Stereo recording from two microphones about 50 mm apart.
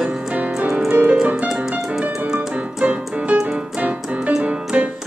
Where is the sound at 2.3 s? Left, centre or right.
Right.